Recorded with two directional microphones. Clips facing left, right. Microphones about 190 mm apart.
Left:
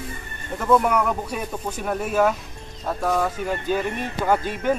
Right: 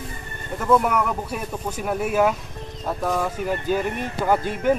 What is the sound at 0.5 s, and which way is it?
Speech, centre (ahead or behind).